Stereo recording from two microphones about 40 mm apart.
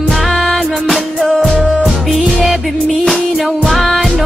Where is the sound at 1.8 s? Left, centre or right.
Centre.